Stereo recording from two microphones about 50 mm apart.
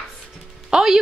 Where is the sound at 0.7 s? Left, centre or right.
Centre.